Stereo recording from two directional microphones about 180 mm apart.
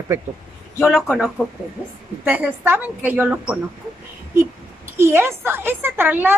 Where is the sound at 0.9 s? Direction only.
Centre (ahead or behind).